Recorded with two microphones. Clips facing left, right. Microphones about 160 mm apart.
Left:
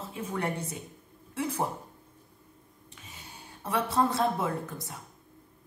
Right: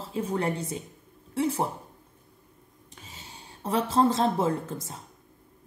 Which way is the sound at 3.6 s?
25° right (ahead or behind).